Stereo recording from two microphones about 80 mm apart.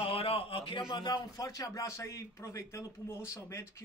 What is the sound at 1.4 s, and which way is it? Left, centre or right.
A man's voice, left.